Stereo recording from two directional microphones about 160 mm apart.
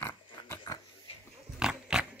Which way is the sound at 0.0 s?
15° left (ahead or behind).